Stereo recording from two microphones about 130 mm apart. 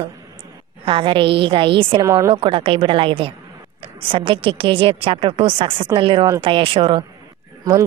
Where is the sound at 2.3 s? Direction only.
45° right (ahead or behind).